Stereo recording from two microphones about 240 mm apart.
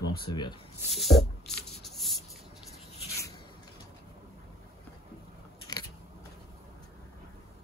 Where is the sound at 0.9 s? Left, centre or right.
Centre.